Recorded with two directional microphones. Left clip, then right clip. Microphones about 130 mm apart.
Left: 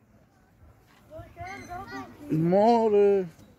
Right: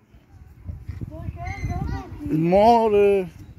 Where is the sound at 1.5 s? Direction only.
20° left (ahead or behind).